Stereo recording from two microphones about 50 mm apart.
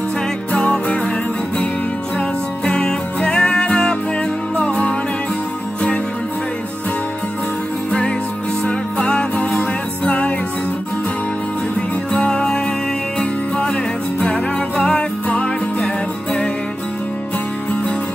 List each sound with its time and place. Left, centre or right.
0.5 s music: left
2.6 s music: centre
8.6 s music: left
12.1 s music: centre
14.2 s music: left